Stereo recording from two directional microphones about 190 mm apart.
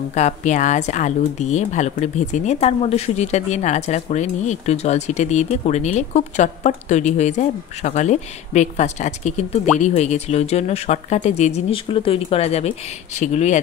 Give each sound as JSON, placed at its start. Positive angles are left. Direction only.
{"t": 0.1, "sound": "speech", "side_deg": 40}